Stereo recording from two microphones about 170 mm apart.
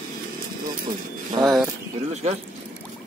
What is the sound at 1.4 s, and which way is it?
Speech, 25° right (ahead or behind).